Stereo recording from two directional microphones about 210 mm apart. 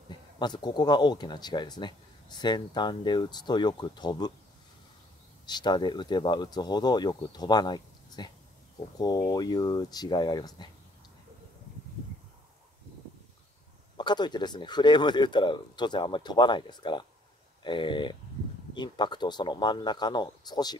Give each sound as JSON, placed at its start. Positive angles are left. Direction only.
{"t": 0.4, "sound": "speech", "side_deg": 20}
{"t": 5.5, "sound": "speech", "side_deg": 20}
{"t": 13.9, "sound": "speech", "side_deg": 20}